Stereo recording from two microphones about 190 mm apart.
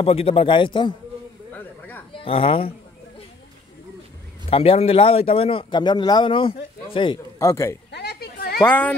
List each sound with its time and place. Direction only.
0.0 s a man's voice: 30° left (ahead or behind)
1.5 s a sound: 10° left (ahead or behind)
2.1 s a woman's voice: 30° left (ahead or behind)
4.5 s a man's voice: 30° left (ahead or behind)
7.9 s a sound: 60° left (ahead or behind)
8.5 s a man's voice: 10° left (ahead or behind)